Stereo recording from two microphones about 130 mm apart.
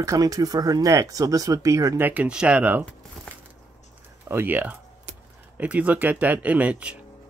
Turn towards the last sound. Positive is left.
turn(degrees=-10)  # may be behind; listen again after turning